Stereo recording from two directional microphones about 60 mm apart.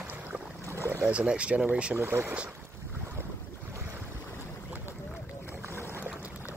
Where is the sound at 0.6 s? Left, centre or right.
Right.